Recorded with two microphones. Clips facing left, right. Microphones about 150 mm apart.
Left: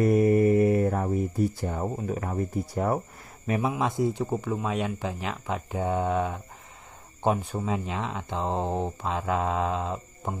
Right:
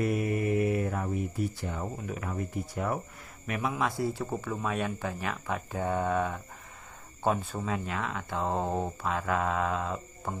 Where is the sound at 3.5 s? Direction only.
25° left (ahead or behind).